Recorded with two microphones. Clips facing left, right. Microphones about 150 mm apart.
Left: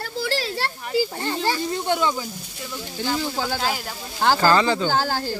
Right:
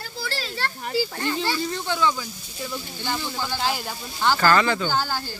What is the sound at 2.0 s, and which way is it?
Speech, 20° left (ahead or behind).